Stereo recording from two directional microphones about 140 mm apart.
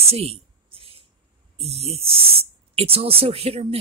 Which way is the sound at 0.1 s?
45° right (ahead or behind).